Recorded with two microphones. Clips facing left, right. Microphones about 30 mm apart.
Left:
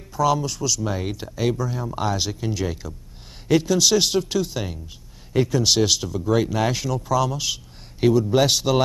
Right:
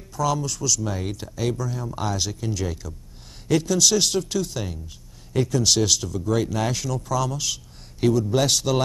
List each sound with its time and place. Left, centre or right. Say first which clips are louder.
0.1 s speech: left 3 dB; centre